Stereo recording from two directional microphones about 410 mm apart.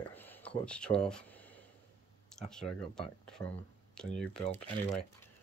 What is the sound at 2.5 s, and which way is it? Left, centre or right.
Speech, centre.